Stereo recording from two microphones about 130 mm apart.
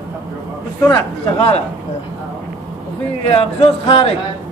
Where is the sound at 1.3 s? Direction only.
50° left (ahead or behind).